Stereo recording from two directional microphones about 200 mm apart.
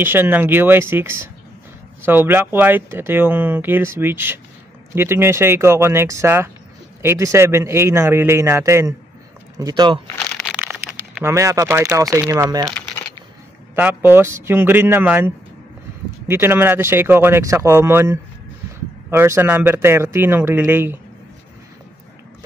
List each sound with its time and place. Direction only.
0.0 s speech: 10° right (ahead or behind)
10.0 s crumpling: 5° left (ahead or behind)
11.2 s speech: 15° right (ahead or behind)
13.7 s speech: 10° right (ahead or behind)